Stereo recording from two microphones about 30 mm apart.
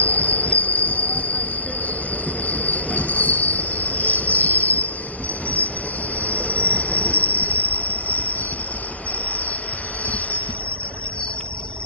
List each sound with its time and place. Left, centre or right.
0.0 s train wheels squealing: left
6.2 s train wheels squealing: left
10.0 s train wheels squealing: left